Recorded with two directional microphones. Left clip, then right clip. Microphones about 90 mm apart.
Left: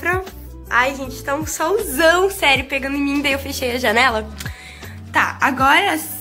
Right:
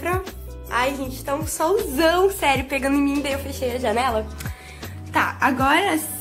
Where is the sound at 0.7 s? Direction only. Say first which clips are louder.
Left 5 dB; 5° left (ahead or behind).